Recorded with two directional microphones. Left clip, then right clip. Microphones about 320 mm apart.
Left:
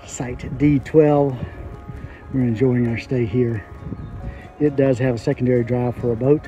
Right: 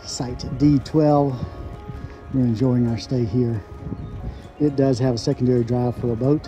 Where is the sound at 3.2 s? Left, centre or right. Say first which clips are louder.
Left 3 dB; centre.